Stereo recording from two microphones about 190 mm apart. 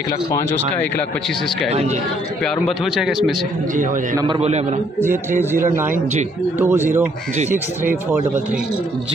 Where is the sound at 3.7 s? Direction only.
40° right (ahead or behind).